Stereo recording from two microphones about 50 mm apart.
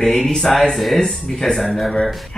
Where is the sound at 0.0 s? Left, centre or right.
Centre.